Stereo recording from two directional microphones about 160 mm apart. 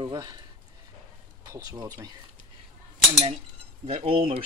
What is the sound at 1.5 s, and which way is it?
Speech, 20° right (ahead or behind).